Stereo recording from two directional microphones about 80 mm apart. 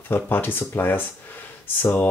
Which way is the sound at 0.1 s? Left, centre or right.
Left.